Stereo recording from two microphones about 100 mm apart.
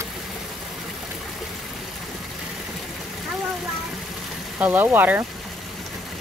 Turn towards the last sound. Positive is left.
turn(degrees=-20)  # may be behind; listen again after turning